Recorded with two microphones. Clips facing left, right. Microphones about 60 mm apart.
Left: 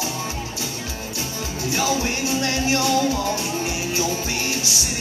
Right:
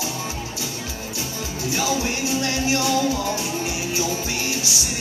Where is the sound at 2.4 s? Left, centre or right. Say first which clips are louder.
Left 1 dB; left.